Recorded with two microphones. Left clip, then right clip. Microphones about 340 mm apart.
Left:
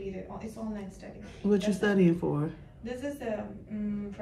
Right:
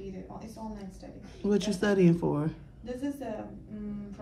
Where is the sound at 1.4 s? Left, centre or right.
Right.